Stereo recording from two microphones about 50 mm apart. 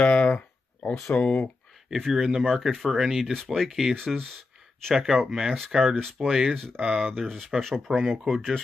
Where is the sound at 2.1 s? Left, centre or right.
Centre.